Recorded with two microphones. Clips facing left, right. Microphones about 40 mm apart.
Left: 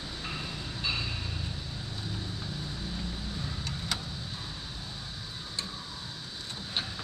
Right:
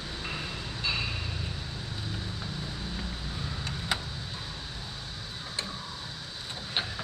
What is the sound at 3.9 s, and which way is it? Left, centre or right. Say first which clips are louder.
Vehicle: right 4 dB; right.